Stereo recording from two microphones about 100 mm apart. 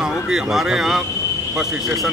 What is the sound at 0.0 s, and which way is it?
Speech, 5° right (ahead or behind).